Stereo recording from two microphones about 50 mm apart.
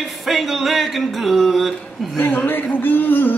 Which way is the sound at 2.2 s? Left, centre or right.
Left.